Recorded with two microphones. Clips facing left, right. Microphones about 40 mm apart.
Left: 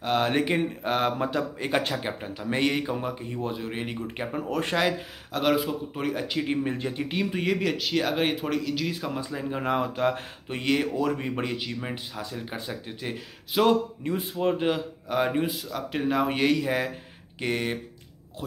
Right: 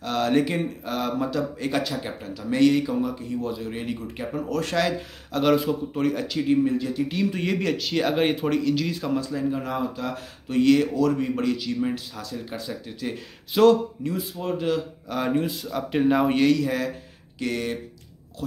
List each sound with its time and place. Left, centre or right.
0.0 s speech: left
0.8 s speech: left
5.3 s speech: centre
6.2 s speech: left
7.3 s speech: centre
8.9 s speech: centre
9.6 s speech: left
10.5 s speech: left
13.5 s speech: centre
14.0 s speech: left
14.5 s speech: left
15.6 s speech: centre
16.3 s speech: centre